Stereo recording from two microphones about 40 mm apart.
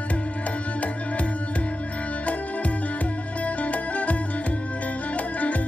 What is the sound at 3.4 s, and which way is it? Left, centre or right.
Music, left.